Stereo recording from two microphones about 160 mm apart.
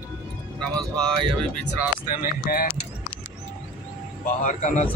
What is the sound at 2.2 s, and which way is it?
Speech, 65° left (ahead or behind).